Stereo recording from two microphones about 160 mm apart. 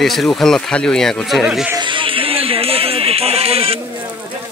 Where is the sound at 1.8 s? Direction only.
30° right (ahead or behind).